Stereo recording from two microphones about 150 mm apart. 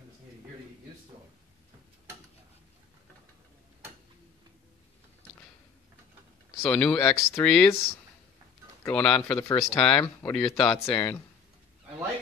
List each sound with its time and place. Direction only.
6.6 s speech: 5° left (ahead or behind)
8.8 s speech: 10° left (ahead or behind)
9.4 s speech: 20° left (ahead or behind)
9.8 s speech: 5° left (ahead or behind)